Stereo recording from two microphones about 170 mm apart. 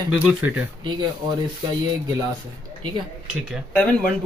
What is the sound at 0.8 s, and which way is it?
Speech, 25° right (ahead or behind).